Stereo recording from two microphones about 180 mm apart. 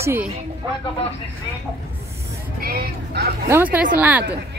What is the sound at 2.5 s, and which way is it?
Speech, 60° right (ahead or behind).